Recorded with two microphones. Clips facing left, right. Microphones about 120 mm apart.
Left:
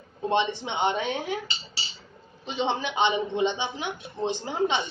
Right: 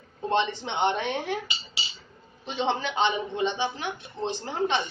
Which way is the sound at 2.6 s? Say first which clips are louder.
Even; 15° left (ahead or behind).